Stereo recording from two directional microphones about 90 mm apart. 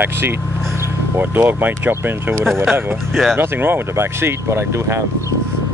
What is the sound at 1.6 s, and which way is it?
Speech, 20° right (ahead or behind).